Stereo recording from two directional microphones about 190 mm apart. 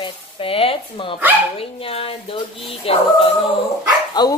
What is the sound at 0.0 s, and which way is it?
Speech, 30° left (ahead or behind).